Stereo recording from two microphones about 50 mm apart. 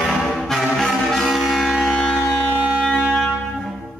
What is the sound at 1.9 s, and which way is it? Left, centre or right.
Civil defense siren, centre.